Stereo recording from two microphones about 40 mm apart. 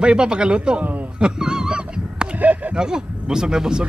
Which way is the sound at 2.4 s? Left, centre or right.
Right.